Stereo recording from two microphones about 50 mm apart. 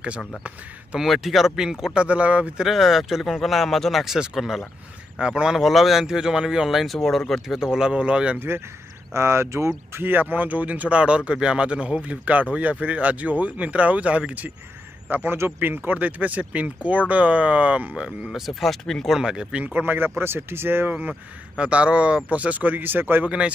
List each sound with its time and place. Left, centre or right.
0.9 s speech: centre
2.0 s speech: right
2.6 s speech: centre
5.6 s speech: centre
7.4 s speech: centre
8.4 s speech: right
9.1 s speech: right
10.0 s speech: right
15.0 s a man's voice: right
18.5 s speech: centre
19.1 s speech: centre
19.6 s speech: right
21.1 s speech: right
23.2 s speech: right